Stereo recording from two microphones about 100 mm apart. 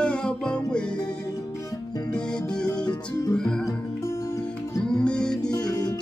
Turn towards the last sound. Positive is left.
turn(degrees=40)  # may be behind; listen again after turning